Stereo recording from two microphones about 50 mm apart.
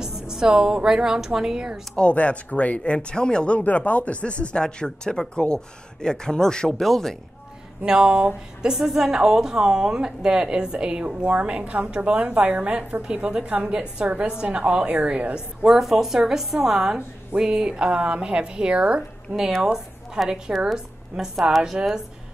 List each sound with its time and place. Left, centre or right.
0.0 s a woman's voice: centre
2.0 s speech: left; by 7.2 s centre
7.8 s a woman's voice: centre
15.6 s a woman's voice: centre; by 19.4 s right
19.6 s a woman's voice: centre